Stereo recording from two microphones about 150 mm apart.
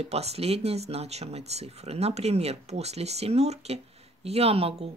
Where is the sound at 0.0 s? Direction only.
45° right (ahead or behind).